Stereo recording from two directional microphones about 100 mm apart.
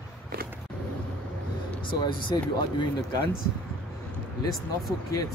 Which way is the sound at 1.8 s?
55° left (ahead or behind).